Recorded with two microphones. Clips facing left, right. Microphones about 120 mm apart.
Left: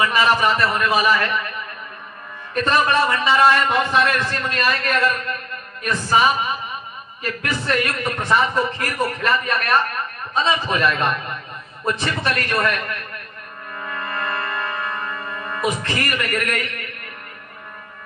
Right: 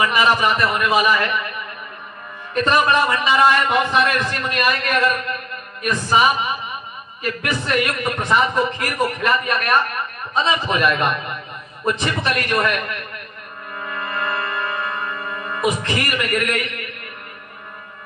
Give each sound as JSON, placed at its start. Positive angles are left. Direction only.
{"t": 0.0, "sound": "a man's voice", "side_deg": -15}
{"t": 13.7, "sound": "music", "side_deg": -15}